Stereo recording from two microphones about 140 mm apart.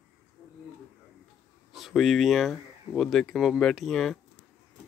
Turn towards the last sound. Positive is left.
turn(degrees=0)  # may be behind; listen again after turning